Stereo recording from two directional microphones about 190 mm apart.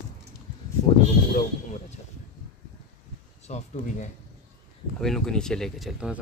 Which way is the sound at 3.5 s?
40° left (ahead or behind).